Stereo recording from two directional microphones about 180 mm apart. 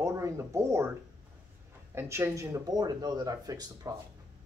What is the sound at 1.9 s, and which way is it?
Speech, 15° right (ahead or behind).